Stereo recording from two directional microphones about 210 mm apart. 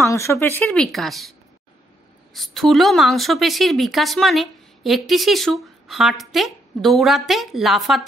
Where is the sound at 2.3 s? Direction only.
Centre (ahead or behind).